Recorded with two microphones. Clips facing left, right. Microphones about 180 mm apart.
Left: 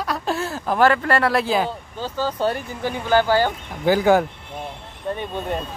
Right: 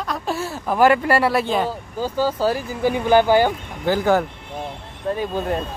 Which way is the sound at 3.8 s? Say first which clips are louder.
Left 2 dB; 10° left (ahead or behind).